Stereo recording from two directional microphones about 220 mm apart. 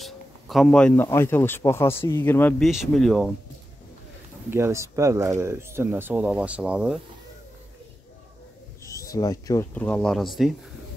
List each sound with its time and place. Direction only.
0.0 s speech: centre (ahead or behind)
4.5 s speech: 10° right (ahead or behind)
8.8 s speech: 15° left (ahead or behind)